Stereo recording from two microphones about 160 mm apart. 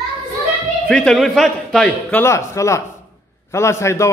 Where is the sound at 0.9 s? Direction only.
5° left (ahead or behind).